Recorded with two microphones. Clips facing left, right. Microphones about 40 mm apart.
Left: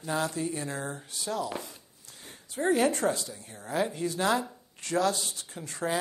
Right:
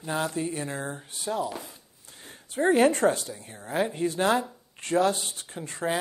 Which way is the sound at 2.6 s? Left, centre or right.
Right.